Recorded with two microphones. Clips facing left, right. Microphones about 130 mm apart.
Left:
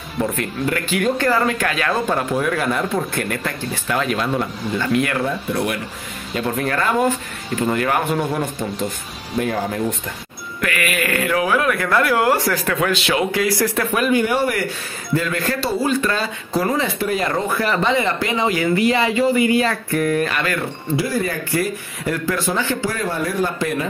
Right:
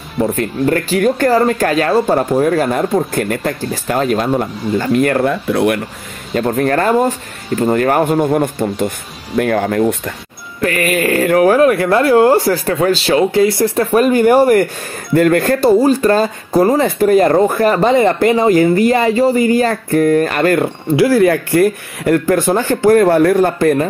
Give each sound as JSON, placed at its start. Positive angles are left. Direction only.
{"t": 0.2, "sound": "speech", "side_deg": -35}
{"t": 5.2, "sound": "speech", "side_deg": -65}
{"t": 6.3, "sound": "speech", "side_deg": -45}
{"t": 10.6, "sound": "speech", "side_deg": -40}
{"t": 20.9, "sound": "speech", "side_deg": -80}